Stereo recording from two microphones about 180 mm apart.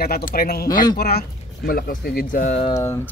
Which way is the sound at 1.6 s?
55° left (ahead or behind).